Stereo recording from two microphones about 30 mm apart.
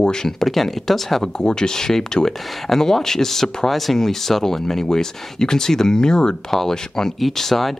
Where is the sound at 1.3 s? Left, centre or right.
Left.